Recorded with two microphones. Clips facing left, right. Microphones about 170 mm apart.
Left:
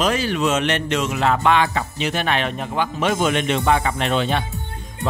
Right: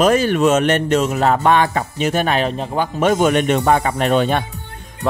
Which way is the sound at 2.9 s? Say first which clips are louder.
Right 6 dB; 45° right (ahead or behind).